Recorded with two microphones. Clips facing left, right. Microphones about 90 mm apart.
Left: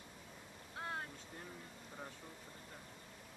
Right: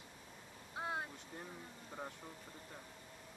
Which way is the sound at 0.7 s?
15° right (ahead or behind).